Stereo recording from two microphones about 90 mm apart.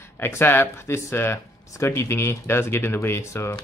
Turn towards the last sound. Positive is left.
turn(degrees=30)  # may be behind; listen again after turning